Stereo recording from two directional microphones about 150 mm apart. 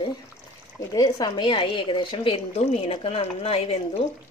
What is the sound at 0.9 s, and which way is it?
A woman's voice, 25° left (ahead or behind).